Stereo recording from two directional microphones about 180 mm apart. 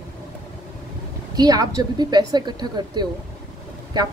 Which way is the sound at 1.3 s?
20° right (ahead or behind).